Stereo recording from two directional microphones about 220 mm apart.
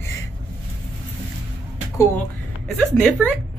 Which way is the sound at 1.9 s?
10° left (ahead or behind).